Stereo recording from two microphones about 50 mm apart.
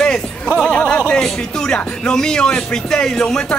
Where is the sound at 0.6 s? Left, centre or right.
Centre.